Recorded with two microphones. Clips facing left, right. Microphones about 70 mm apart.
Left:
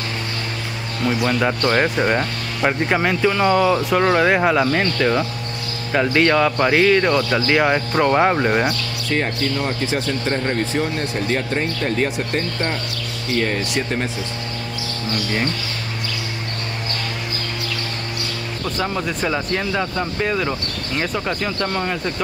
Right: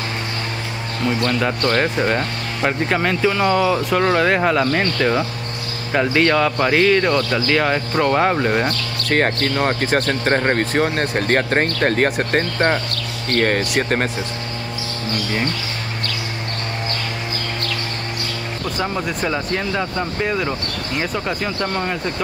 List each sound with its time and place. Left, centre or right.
1.2 s speech: centre
9.1 s speech: right
18.8 s speech: centre